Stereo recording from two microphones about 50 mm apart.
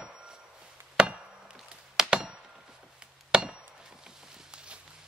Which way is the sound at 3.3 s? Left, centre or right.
Centre.